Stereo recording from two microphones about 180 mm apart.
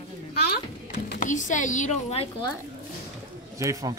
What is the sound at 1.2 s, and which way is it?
Speech, 45° left (ahead or behind).